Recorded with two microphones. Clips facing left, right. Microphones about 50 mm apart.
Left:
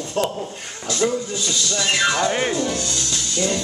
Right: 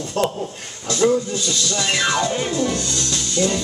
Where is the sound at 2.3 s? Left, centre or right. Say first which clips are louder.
Left 2 dB; left.